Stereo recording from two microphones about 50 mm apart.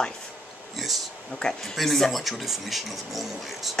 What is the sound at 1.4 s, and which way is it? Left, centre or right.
Speech, centre.